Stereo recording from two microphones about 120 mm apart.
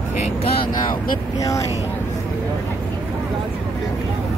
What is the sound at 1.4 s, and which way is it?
Speech, 25° left (ahead or behind).